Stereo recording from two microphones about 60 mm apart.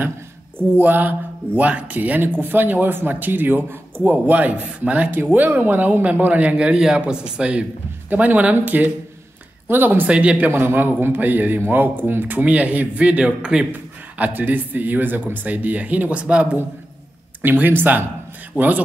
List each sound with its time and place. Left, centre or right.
0.6 s speech: right
5.1 s a man's voice: right; by 7.6 s centre
8.1 s a man's voice: right
10.0 s a man's voice: right
10.5 s speech: right; by 13.7 s centre
13.7 s a man's voice: right
17.4 s a man's voice: right